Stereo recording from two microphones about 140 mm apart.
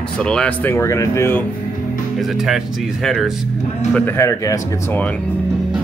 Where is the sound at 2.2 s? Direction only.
Centre (ahead or behind).